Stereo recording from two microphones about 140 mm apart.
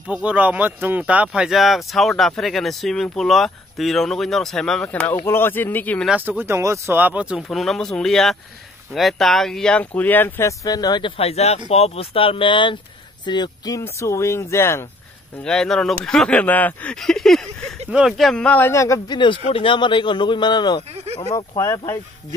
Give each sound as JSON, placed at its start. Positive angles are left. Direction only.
{"t": 0.1, "sound": "speech", "side_deg": -10}
{"t": 4.8, "sound": "speech", "side_deg": 15}
{"t": 6.0, "sound": "speech", "side_deg": -10}
{"t": 15.4, "sound": "speech", "side_deg": 5}
{"t": 19.1, "sound": "speech", "side_deg": 35}
{"t": 21.5, "sound": "speech", "side_deg": 20}